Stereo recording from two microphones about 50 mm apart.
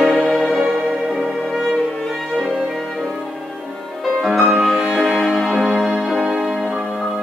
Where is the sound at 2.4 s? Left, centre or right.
Centre.